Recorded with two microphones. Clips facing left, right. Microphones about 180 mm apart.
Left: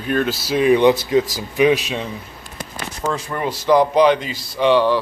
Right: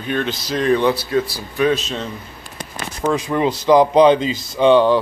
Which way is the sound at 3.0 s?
15° right (ahead or behind).